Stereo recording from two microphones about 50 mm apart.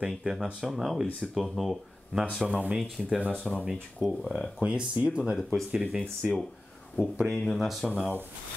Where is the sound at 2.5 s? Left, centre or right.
Right.